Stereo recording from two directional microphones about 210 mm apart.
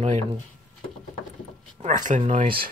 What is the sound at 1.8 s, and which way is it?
Speech, 35° right (ahead or behind).